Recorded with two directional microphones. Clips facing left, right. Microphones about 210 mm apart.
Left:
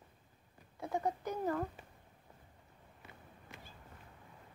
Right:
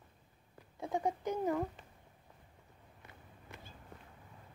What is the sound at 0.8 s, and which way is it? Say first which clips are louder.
Speech: right 1 dB; 15° right (ahead or behind).